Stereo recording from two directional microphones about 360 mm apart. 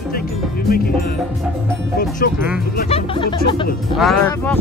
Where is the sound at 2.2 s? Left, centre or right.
Left.